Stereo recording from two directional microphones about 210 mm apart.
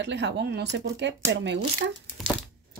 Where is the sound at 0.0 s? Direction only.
55° right (ahead or behind).